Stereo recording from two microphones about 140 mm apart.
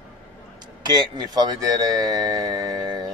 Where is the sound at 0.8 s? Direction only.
30° right (ahead or behind).